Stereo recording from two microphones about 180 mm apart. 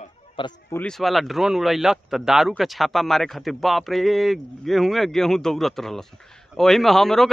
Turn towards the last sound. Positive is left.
turn(degrees=0)  # may be behind; listen again after turning